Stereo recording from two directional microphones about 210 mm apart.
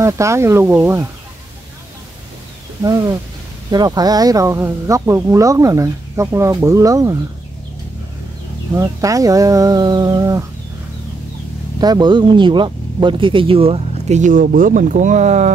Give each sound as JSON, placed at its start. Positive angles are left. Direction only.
{"t": 0.0, "sound": "speech", "side_deg": -15}
{"t": 2.8, "sound": "speech", "side_deg": -15}
{"t": 8.7, "sound": "speech", "side_deg": -15}
{"t": 11.8, "sound": "speech", "side_deg": -20}